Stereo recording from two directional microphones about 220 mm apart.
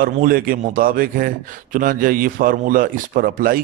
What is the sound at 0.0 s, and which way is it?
A man's voice, 40° right (ahead or behind).